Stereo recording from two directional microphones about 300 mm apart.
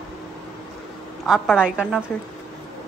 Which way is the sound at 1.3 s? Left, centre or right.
Centre.